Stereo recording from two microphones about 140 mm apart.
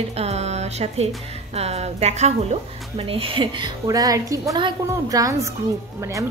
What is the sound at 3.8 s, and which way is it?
A woman's voice, 25° right (ahead or behind).